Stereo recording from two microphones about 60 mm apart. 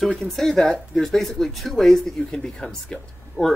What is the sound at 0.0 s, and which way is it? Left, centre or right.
Speech, centre.